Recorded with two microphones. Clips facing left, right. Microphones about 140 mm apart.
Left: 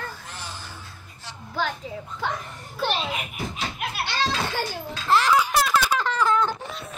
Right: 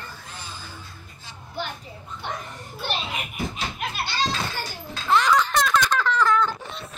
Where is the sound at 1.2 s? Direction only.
90° left.